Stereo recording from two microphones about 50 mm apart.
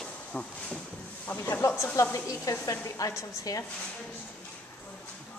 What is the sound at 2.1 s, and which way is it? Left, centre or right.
A woman's voice, left.